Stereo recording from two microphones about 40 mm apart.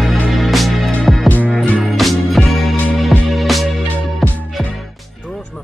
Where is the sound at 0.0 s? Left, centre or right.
Centre.